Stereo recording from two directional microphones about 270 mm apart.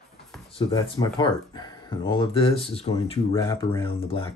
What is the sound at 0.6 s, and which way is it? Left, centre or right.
Speech, centre.